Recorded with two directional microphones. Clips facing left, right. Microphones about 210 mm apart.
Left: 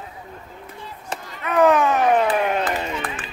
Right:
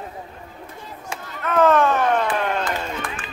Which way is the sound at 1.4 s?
15° left (ahead or behind).